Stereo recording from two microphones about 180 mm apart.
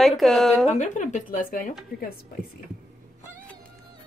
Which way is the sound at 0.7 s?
40° left (ahead or behind).